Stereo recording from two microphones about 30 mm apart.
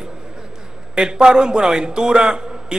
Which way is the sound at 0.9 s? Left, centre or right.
Right.